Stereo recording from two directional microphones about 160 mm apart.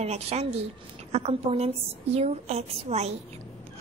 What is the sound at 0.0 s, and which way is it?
A woman's voice, 40° right (ahead or behind).